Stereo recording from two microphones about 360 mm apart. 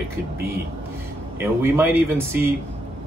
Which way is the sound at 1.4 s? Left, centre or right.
Centre.